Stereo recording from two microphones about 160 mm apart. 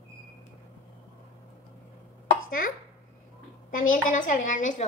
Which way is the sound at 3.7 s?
55° left (ahead or behind).